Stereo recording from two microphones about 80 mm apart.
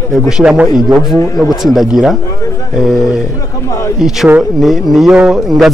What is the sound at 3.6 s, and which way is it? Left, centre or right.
Speech, left.